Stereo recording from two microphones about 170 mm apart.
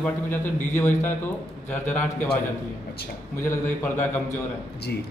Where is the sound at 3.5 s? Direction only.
10° left (ahead or behind).